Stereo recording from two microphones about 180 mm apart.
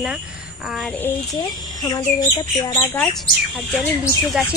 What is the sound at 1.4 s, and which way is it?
Speech, 25° left (ahead or behind).